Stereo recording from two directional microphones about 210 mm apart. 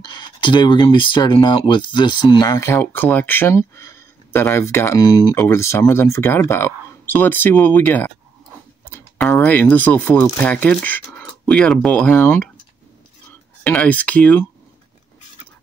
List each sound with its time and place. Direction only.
0.0 s speech: 20° left (ahead or behind)
13.7 s speech: 5° left (ahead or behind)